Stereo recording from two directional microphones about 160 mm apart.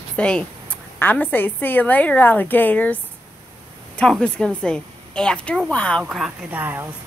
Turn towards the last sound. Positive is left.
turn(degrees=-10)  # may be behind; listen again after turning